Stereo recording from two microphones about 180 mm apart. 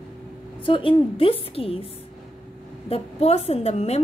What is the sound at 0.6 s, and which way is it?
A woman's voice, 30° left (ahead or behind).